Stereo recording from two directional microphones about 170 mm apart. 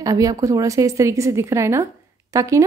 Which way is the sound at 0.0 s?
20° right (ahead or behind).